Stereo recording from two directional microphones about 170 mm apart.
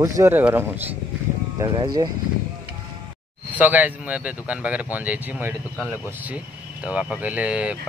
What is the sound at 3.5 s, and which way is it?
Bell, 10° right (ahead or behind).